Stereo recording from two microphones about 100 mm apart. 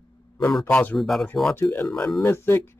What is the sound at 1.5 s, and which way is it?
Speech, 25° left (ahead or behind).